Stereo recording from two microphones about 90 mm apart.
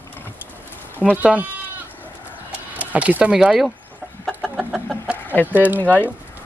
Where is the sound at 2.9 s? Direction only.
15° right (ahead or behind).